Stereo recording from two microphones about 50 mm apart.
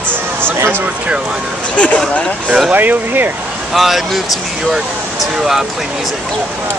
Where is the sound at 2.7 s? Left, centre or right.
Right.